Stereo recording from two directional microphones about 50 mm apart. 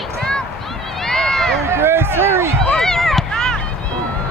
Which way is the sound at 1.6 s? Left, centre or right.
Right.